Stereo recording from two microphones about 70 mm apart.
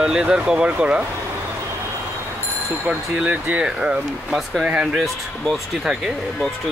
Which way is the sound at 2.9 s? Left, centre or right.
Centre.